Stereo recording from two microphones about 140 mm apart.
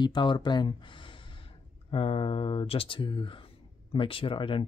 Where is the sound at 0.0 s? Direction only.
35° left (ahead or behind).